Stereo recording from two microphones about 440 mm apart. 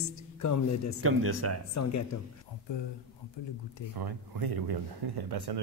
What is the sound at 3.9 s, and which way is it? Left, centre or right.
Speech, right.